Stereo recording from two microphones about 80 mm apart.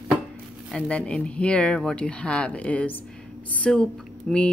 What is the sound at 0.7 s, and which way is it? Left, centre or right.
Speech, centre.